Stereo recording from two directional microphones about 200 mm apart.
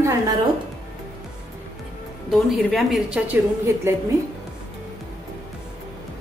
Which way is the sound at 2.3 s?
Centre (ahead or behind).